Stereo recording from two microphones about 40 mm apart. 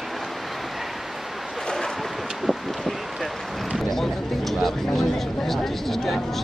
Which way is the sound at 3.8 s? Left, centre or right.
Centre.